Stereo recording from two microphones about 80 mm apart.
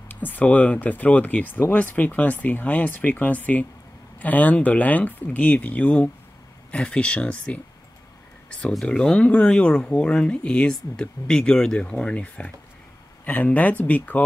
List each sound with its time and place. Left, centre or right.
0.1 s speech: left